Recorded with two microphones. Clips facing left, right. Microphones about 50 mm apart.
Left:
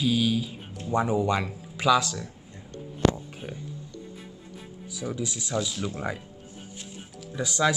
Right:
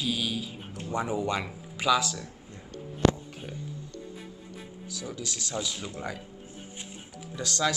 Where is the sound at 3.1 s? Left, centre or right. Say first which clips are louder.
Left 3 dB; centre.